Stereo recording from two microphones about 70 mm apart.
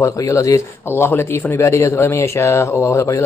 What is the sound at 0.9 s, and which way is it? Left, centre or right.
Speech, left.